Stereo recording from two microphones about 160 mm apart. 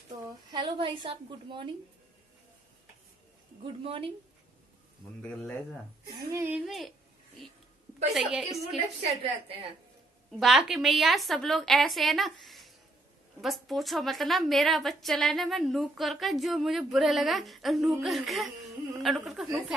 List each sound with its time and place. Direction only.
0.1 s a woman's voice: 20° right (ahead or behind)
3.8 s a woman's voice: 35° right (ahead or behind)
6.3 s a woman's voice: 15° right (ahead or behind)
6.6 s a woman's voice: centre (ahead or behind)
8.1 s a woman's voice: 5° right (ahead or behind)
8.5 s a woman's voice: 40° right (ahead or behind)
10.4 s a woman's voice: centre (ahead or behind)